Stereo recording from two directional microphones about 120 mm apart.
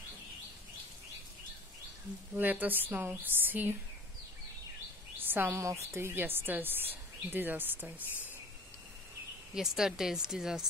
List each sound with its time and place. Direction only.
2.3 s speech: 15° right (ahead or behind)
5.2 s a woman's voice: 15° right (ahead or behind)
9.5 s speech: 5° right (ahead or behind)